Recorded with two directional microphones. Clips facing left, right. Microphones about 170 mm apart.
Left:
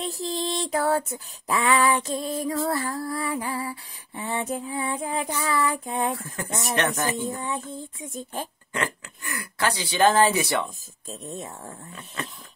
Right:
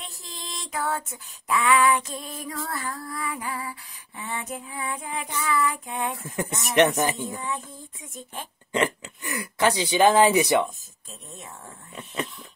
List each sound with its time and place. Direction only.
0.0 s female singing: 35° left (ahead or behind)
6.1 s speech: 20° right (ahead or behind)
7.4 s female singing: 30° left (ahead or behind)
8.7 s speech: 20° right (ahead or behind)
12.2 s speech: 20° right (ahead or behind)